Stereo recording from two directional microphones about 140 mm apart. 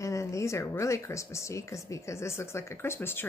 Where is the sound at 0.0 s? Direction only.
20° left (ahead or behind).